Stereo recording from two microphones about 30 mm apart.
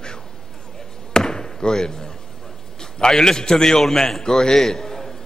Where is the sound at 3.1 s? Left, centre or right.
Centre.